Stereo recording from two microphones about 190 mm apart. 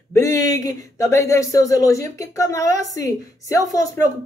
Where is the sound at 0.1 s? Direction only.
15° left (ahead or behind).